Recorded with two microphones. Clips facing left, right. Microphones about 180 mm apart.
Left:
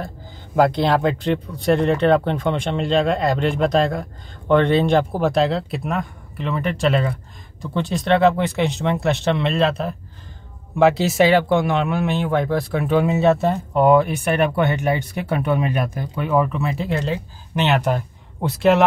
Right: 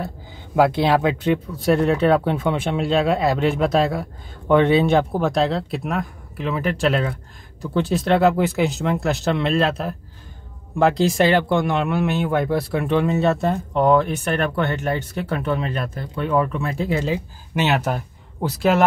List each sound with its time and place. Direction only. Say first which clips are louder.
0.6 s speech: even; 5° right (ahead or behind)